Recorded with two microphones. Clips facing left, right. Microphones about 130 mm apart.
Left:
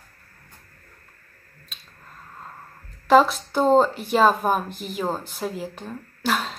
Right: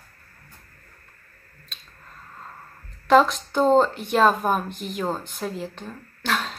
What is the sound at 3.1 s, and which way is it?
Speech, 5° left (ahead or behind).